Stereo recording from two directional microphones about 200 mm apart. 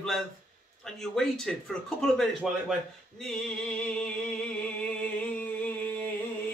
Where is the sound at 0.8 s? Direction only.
Centre (ahead or behind).